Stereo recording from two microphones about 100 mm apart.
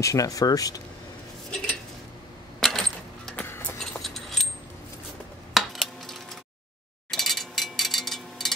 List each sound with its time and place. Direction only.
0.0 s speech: 35° left (ahead or behind)
2.6 s a sound: 5° left (ahead or behind)
3.3 s clip-clop: 20° left (ahead or behind)
3.8 s keys jangling: 5° left (ahead or behind)
5.5 s a sound: centre (ahead or behind)
7.1 s wind chime: centre (ahead or behind)